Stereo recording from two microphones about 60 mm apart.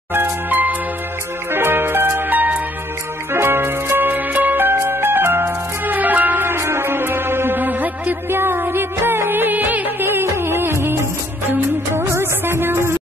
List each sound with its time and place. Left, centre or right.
0.1 s music: right
3.3 s music: right
6.5 s music: right